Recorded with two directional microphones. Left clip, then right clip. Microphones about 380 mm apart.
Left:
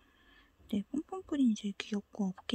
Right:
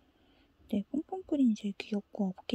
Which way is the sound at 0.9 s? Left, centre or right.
Centre.